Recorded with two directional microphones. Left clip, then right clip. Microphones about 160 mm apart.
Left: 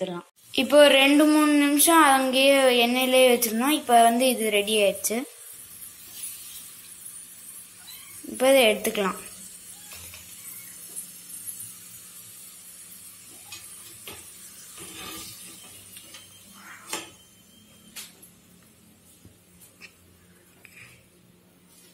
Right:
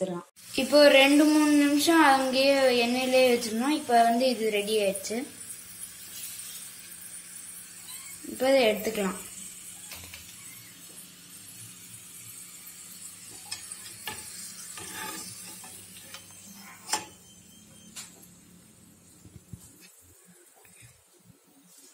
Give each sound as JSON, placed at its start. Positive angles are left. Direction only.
{"t": 0.0, "sound": "a woman's voice", "side_deg": 0}
{"t": 8.4, "sound": "a woman's voice", "side_deg": 0}